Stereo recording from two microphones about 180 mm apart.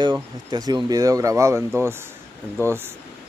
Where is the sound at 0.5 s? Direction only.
20° right (ahead or behind).